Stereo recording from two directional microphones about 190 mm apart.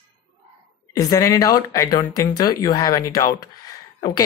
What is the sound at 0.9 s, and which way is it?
Speech, 15° left (ahead or behind).